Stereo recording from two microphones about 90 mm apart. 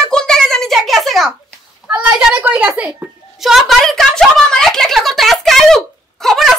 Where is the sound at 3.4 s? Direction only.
Centre (ahead or behind).